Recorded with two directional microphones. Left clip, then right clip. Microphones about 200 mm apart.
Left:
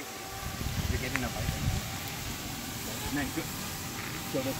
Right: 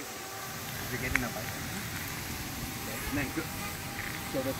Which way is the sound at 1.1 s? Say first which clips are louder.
Right 3 dB; 10° right (ahead or behind).